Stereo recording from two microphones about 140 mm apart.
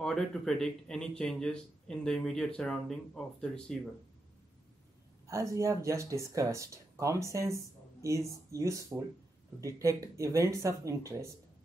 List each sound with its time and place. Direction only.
0.0 s speech: 5° left (ahead or behind)
5.2 s speech: 20° right (ahead or behind)